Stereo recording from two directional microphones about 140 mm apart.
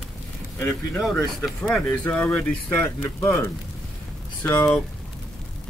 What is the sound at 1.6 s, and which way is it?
Speech, 10° left (ahead or behind).